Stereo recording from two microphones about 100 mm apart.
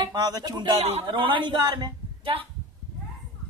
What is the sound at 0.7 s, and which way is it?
Speech, 90° right.